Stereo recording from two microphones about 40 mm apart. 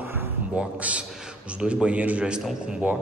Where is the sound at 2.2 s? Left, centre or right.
Right.